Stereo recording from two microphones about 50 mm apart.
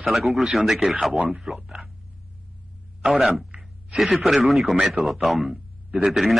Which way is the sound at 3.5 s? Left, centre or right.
Centre.